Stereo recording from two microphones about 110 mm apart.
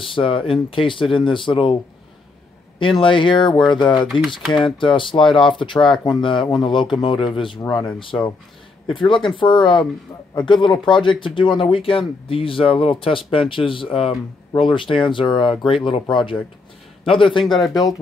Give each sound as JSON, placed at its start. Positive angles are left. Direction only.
{"t": 0.1, "sound": "speech", "side_deg": 55}
{"t": 3.0, "sound": "speech", "side_deg": 50}
{"t": 17.5, "sound": "speech", "side_deg": 0}